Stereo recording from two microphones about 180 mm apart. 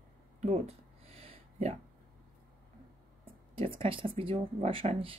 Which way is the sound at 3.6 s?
30° right (ahead or behind).